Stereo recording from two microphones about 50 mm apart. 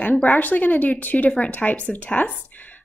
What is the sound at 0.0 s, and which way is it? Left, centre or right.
A woman's voice, left.